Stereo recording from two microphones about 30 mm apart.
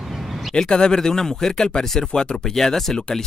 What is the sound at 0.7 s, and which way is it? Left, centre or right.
Speech, left.